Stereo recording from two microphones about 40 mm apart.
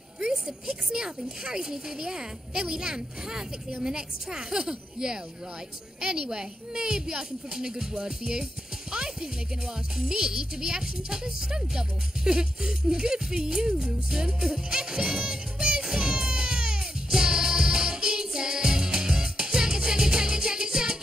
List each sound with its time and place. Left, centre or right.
0.2 s speech: centre
8.9 s a sound: centre
9.9 s speech: centre
15.8 s music: centre